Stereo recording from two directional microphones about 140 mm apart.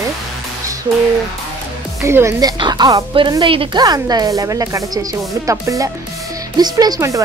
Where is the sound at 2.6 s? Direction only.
30° right (ahead or behind).